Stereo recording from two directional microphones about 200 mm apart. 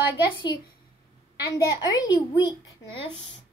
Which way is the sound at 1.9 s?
20° left (ahead or behind).